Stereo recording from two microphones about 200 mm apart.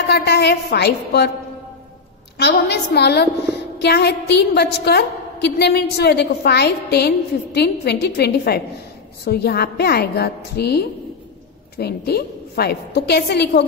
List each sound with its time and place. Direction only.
0.1 s a woman's voice: 55° left (ahead or behind)
2.3 s a woman's voice: 55° left (ahead or behind)